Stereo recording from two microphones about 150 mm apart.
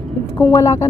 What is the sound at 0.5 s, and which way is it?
Speech, 20° left (ahead or behind).